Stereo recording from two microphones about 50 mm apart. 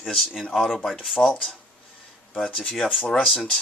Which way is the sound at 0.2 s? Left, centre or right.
Centre.